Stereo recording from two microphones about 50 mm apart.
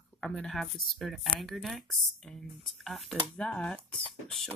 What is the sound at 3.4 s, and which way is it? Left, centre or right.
Speech, left.